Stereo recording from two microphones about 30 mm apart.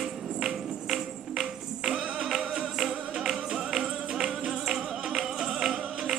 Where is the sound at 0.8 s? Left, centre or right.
Centre.